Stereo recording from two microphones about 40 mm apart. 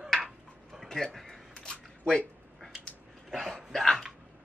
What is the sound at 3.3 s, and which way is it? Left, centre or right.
Dog, centre.